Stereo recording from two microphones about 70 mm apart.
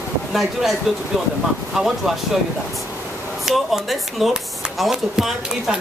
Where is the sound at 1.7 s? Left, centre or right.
Centre.